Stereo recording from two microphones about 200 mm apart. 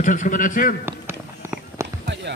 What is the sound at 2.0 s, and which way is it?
Music, 60° right (ahead or behind).